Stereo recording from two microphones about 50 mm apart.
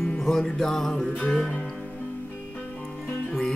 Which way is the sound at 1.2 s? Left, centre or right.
Centre.